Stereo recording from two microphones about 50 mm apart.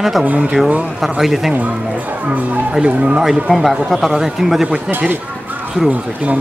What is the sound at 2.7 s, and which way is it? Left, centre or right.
Speech, right.